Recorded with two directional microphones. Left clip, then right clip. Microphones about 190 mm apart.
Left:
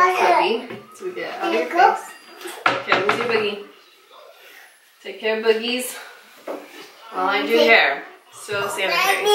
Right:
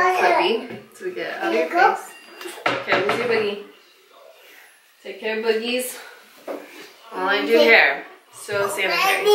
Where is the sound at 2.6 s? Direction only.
5° right (ahead or behind).